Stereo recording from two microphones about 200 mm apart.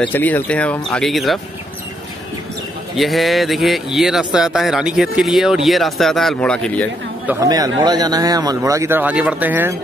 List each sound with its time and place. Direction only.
0.0 s speech: 10° left (ahead or behind)
3.0 s speech: centre (ahead or behind)
7.2 s speech: 15° right (ahead or behind)